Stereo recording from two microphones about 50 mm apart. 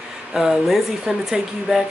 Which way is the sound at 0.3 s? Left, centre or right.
Centre.